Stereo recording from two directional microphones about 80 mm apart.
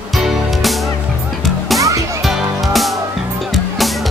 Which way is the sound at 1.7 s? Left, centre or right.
Right.